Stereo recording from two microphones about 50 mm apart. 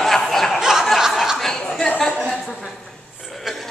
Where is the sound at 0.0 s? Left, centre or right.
Centre.